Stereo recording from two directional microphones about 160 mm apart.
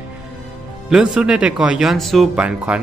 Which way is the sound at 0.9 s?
5° right (ahead or behind).